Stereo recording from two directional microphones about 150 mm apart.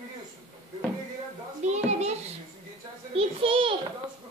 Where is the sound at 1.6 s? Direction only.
50° right (ahead or behind).